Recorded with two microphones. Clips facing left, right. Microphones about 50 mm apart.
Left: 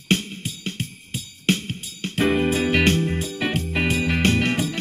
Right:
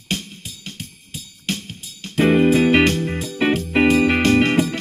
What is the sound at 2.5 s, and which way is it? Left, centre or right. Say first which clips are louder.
Music: right 4 dB; right.